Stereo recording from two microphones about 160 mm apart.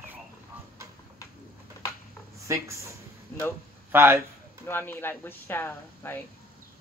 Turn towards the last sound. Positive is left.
turn(degrees=15)  # may be behind; listen again after turning